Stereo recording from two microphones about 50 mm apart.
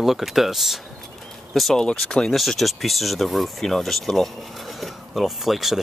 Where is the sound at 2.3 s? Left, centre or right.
Centre.